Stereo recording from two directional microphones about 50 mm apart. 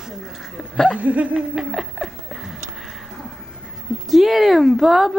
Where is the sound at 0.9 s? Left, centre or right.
Right.